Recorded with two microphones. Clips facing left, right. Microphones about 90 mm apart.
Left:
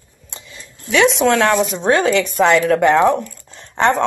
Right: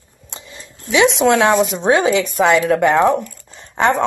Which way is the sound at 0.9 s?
Centre (ahead or behind).